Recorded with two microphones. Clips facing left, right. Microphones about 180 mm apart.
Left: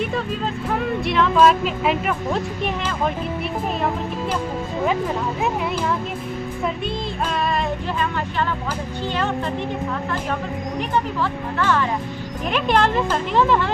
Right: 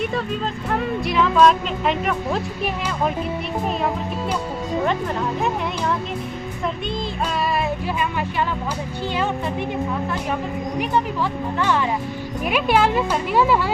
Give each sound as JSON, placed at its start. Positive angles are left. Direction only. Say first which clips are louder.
{"t": 0.7, "sound": "speech", "louder": "even", "side_deg": 0}
{"t": 7.4, "sound": "speech", "louder": "even", "side_deg": -10}
{"t": 11.6, "sound": "speech", "louder": "left 1 dB", "side_deg": -15}